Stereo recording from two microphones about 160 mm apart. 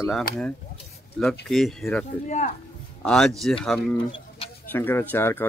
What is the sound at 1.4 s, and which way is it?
Speech, centre (ahead or behind).